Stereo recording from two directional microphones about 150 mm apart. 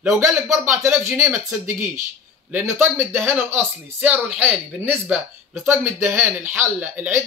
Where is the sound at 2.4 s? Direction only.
10° right (ahead or behind).